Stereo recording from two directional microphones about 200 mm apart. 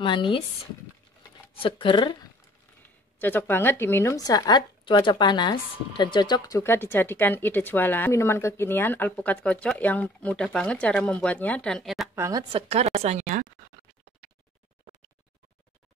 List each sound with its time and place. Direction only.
0.0 s speech: 25° left (ahead or behind)
1.6 s speech: 25° left (ahead or behind)
3.2 s speech: 10° left (ahead or behind)
12.2 s speech: 20° right (ahead or behind)
12.6 s speech: 30° right (ahead or behind)